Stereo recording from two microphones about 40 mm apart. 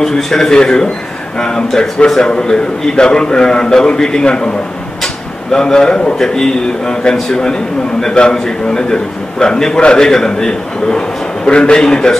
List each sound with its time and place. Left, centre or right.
0.0 s a man's voice: centre
5.0 s a sound: centre
6.1 s a man's voice: centre